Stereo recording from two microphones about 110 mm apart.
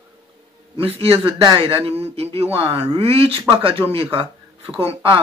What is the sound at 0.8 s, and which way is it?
Speech, 55° right (ahead or behind).